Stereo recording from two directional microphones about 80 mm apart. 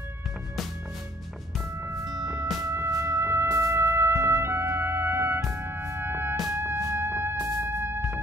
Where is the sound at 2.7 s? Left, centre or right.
Right.